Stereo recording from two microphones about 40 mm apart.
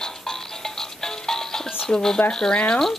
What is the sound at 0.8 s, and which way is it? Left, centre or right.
Music, centre.